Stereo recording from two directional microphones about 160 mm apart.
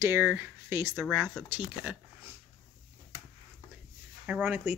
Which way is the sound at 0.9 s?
Centre (ahead or behind).